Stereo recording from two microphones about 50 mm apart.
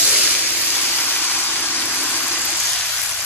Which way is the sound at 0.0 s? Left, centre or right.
Right.